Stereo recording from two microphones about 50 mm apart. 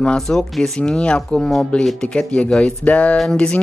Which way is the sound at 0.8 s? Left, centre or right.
Centre.